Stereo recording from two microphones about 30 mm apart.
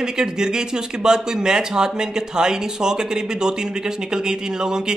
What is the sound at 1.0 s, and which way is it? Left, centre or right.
A man's voice, right.